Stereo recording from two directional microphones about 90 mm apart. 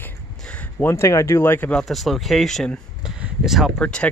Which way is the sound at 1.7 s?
Centre (ahead or behind).